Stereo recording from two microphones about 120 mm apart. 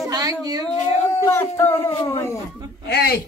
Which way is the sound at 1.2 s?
20° left (ahead or behind).